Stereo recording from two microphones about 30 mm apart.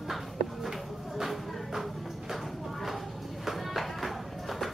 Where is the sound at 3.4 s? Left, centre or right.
Centre.